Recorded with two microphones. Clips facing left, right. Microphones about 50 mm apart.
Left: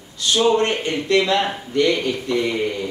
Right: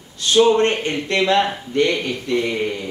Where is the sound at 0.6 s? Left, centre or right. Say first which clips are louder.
Right 2 dB; right.